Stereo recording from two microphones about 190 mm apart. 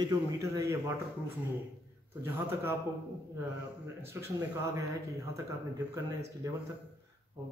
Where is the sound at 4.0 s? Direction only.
15° right (ahead or behind).